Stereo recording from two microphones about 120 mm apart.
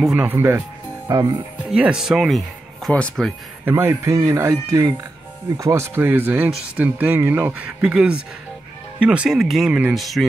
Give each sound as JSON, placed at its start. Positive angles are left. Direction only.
{"t": 0.0, "sound": "speech", "side_deg": -10}
{"t": 1.1, "sound": "speech", "side_deg": -30}
{"t": 1.7, "sound": "speech", "side_deg": -5}
{"t": 3.6, "sound": "speech", "side_deg": -20}